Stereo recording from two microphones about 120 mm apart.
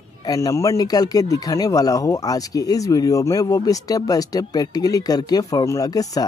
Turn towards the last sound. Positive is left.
turn(degrees=30)  # may be behind; listen again after turning